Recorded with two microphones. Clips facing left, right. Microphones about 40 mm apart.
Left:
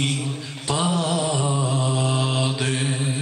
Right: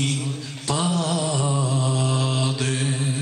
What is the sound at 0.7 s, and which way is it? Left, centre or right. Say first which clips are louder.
Mantra: left 1 dB; centre.